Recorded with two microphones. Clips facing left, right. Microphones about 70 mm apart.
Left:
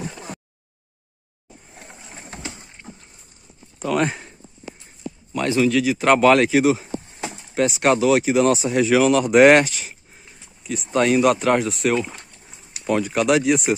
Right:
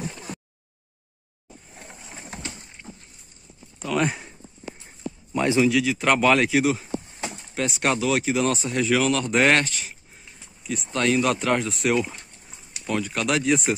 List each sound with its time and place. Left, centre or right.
1.7 s vehicle: centre
3.8 s speech: centre
5.3 s speech: centre
5.7 s speech: centre